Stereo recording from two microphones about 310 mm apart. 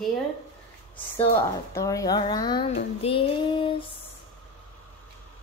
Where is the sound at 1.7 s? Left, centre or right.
Centre.